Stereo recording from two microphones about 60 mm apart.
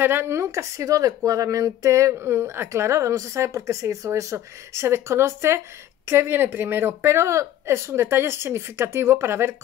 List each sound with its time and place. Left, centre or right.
0.0 s speech: right
2.1 s a woman's voice: right